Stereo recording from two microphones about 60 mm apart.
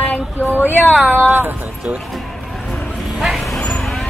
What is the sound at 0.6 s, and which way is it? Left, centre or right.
Speech, left.